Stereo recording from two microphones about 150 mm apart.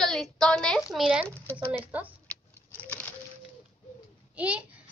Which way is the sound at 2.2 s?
10° left (ahead or behind).